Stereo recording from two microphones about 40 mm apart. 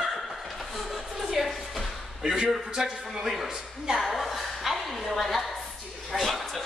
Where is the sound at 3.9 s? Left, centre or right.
Centre.